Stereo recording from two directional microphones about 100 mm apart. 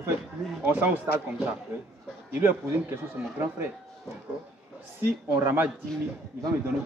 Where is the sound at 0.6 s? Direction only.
15° right (ahead or behind).